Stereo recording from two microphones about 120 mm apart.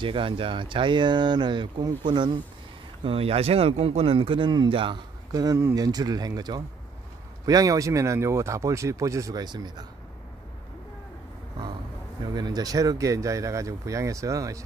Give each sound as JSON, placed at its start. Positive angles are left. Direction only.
{"t": 0.0, "sound": "speech", "side_deg": -45}
{"t": 3.0, "sound": "speech", "side_deg": -50}
{"t": 5.3, "sound": "speech", "side_deg": -30}
{"t": 5.6, "sound": "speech", "side_deg": -20}
{"t": 5.9, "sound": "speech", "side_deg": -35}
{"t": 12.4, "sound": "speech", "side_deg": -35}